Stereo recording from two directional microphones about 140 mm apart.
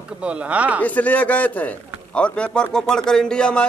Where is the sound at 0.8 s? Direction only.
10° left (ahead or behind).